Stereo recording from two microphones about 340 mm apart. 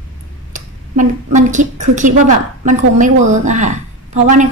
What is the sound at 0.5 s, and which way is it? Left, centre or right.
A woman's voice, right.